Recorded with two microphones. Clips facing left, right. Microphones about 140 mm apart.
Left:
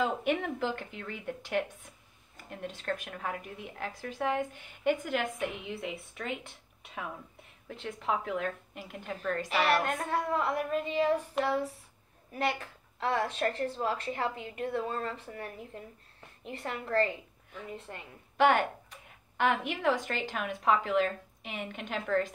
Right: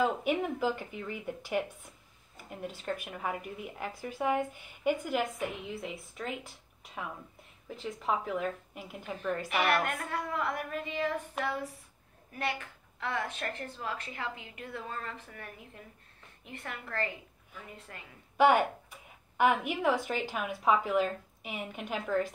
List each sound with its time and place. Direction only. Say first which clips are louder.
0.0 s a woman's voice: right 1 dB; 5° right (ahead or behind)
9.5 s a woman's voice: left 2 dB; 30° left (ahead or behind)
18.4 s a woman's voice: right 1 dB; 10° right (ahead or behind)